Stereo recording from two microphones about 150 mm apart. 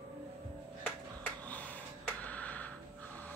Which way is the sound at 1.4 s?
10° left (ahead or behind).